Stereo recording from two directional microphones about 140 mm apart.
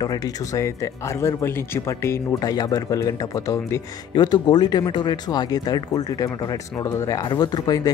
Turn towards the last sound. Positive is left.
turn(degrees=30)  # may be behind; listen again after turning